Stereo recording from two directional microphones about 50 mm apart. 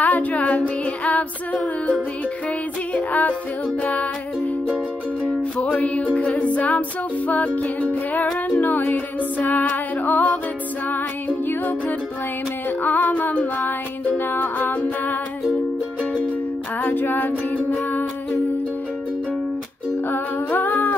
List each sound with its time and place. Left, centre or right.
0.0 s music: left
5.8 s music: left
12.8 s music: left
13.6 s music: left
16.8 s music: left
20.1 s music: left